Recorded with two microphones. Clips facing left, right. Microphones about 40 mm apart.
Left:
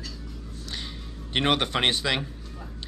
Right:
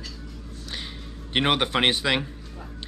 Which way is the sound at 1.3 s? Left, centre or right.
Centre.